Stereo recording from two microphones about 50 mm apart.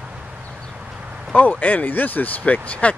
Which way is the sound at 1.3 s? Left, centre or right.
Left.